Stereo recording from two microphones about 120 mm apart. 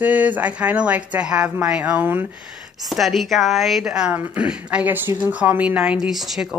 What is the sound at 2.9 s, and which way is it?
A woman's voice, centre (ahead or behind).